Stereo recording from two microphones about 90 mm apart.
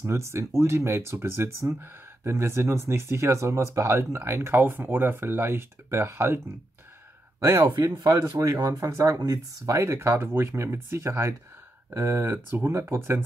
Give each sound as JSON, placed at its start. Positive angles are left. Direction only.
{"t": 0.0, "sound": "speech", "side_deg": -30}